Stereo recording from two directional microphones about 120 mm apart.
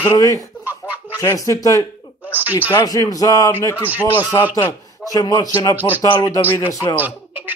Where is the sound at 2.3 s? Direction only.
15° right (ahead or behind).